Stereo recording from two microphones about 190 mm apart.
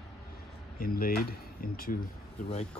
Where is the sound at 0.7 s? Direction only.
50° left (ahead or behind).